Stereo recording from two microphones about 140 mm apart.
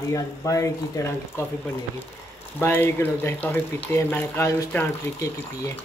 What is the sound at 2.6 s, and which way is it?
Speech, 15° left (ahead or behind).